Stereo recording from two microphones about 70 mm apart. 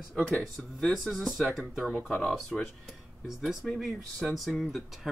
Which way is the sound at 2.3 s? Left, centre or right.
Centre.